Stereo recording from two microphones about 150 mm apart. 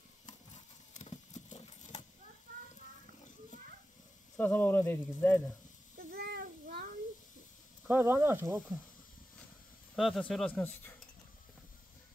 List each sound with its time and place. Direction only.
0.9 s horse: 50° left (ahead or behind)
4.4 s speech: 10° left (ahead or behind)
5.9 s child singing: 85° right
7.9 s speech: 15° right (ahead or behind)
9.9 s speech: centre (ahead or behind)